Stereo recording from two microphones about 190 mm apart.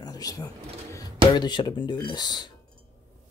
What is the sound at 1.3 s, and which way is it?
Speech, 25° left (ahead or behind).